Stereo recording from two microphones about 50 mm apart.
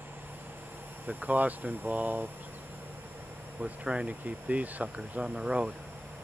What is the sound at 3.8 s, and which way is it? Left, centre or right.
Speech, centre.